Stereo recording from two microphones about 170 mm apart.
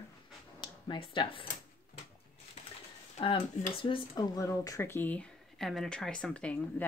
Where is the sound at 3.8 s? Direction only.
25° left (ahead or behind).